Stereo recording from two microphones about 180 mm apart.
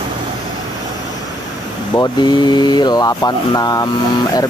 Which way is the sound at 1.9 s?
25° left (ahead or behind).